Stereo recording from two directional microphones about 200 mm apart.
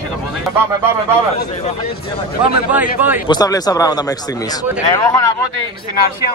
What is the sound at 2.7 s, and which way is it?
Speech, 10° right (ahead or behind).